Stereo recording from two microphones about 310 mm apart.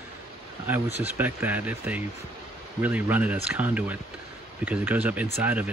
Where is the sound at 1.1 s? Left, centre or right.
Centre.